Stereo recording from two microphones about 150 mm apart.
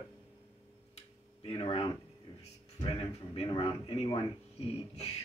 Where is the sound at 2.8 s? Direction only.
35° left (ahead or behind).